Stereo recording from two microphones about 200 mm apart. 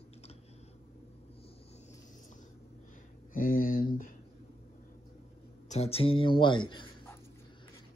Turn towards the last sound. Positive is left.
turn(degrees=25)  # may be behind; listen again after turning